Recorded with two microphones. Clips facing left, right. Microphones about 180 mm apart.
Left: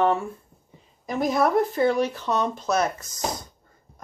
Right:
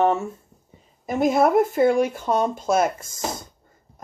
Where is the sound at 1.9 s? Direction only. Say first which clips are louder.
Right 3 dB; 50° right (ahead or behind).